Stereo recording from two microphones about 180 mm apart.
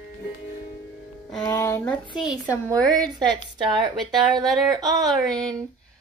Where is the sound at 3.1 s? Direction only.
25° right (ahead or behind).